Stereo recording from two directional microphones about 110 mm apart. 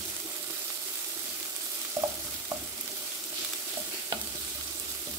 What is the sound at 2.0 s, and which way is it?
Stir, 30° right (ahead or behind).